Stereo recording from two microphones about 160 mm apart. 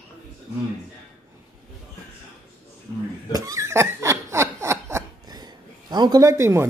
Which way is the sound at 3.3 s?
20° right (ahead or behind).